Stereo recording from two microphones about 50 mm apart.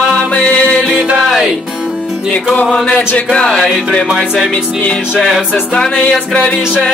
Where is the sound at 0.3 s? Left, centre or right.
Left.